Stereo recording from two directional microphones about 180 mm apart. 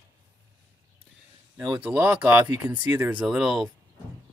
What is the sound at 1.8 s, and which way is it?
Speech, 10° right (ahead or behind).